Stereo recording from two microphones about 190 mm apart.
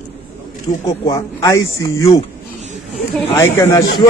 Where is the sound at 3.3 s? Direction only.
15° left (ahead or behind).